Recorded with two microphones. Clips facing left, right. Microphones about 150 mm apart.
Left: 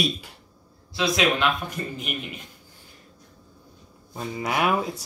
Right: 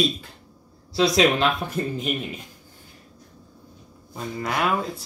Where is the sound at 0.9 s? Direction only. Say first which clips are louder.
Right 4 dB; 35° right (ahead or behind).